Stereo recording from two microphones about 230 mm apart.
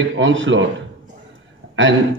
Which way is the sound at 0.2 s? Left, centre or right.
Right.